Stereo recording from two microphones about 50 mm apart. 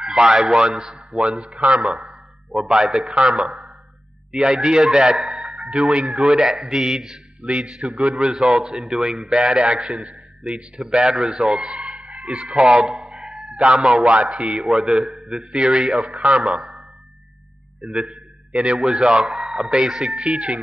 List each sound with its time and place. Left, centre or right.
0.0 s a man's voice: centre
1.8 s a man's voice: centre
4.3 s a man's voice: centre
6.0 s a man's voice: centre
7.4 s a man's voice: right
8.3 s a man's voice: centre
11.6 s music: centre
12.2 s a man's voice: centre
15.2 s a man's voice: centre
16.2 s a man's voice: right
17.8 s a man's voice: centre
18.1 s a sound: right
18.8 s a man's voice: centre